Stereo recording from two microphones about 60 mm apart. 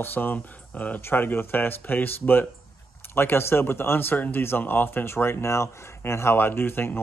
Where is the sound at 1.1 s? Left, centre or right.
Left.